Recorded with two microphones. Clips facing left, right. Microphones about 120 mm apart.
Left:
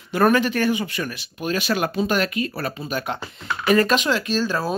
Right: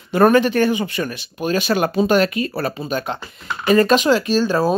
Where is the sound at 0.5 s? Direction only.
30° right (ahead or behind).